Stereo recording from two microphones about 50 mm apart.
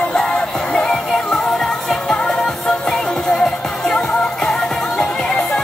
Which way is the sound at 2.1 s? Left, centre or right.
Centre.